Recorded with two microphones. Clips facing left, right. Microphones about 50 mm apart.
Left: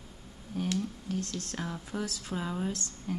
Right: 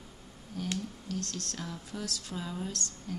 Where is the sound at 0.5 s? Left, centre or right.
Left.